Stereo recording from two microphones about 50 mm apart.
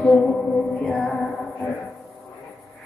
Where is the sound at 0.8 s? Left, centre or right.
Centre.